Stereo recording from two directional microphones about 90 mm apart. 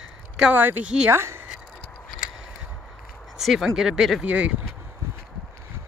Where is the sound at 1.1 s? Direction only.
25° right (ahead or behind).